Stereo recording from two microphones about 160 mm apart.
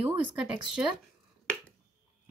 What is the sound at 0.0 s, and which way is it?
Speech, 10° right (ahead or behind).